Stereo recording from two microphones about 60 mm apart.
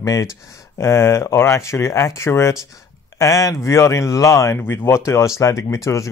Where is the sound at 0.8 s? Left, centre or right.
Left.